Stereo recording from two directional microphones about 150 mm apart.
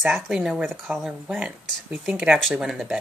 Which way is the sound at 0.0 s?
Centre (ahead or behind).